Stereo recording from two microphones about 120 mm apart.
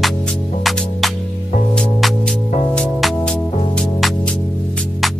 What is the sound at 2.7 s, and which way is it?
Music, 5° left (ahead or behind).